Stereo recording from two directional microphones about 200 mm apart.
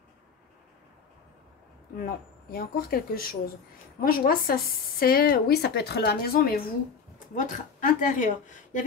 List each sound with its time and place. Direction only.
2.0 s speech: 45° left (ahead or behind)